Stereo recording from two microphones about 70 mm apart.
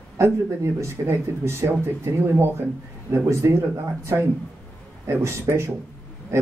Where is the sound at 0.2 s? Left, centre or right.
Right.